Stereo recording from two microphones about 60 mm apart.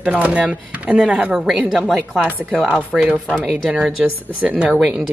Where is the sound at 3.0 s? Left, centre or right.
Right.